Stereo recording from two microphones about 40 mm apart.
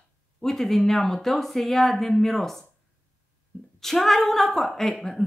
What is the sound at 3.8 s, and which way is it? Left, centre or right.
Speech, centre.